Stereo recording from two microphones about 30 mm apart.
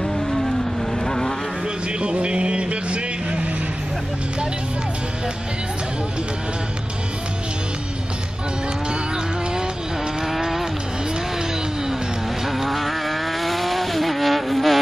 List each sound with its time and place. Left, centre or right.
0.0 s vehicle: centre
2.0 s a sound: right
10.2 s vehicle: centre
12.4 s vehicle: centre